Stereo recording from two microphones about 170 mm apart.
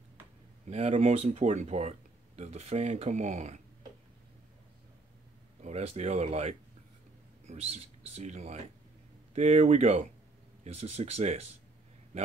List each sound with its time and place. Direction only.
0.7 s speech: 40° right (ahead or behind)
5.6 s speech: 40° right (ahead or behind)